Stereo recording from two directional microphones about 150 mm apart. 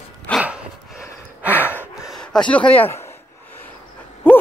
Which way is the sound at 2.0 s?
5° left (ahead or behind).